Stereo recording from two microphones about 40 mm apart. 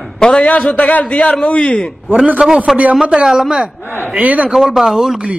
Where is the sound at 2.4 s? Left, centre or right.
Right.